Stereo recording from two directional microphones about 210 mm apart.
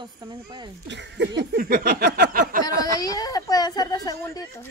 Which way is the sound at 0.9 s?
55° right (ahead or behind).